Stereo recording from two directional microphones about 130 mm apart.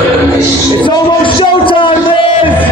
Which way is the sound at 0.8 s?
40° left (ahead or behind).